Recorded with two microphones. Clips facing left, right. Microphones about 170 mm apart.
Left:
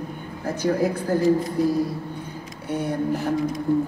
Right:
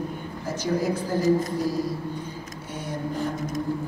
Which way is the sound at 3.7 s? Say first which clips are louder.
Left 11 dB; 60° left (ahead or behind).